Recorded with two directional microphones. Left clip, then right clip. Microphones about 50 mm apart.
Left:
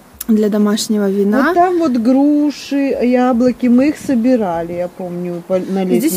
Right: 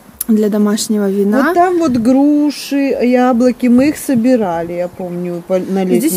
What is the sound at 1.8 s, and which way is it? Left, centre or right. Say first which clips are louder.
Speech: right 1 dB; right.